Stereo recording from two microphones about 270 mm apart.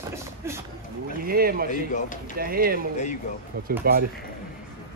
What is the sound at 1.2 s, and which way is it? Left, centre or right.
Speech, right.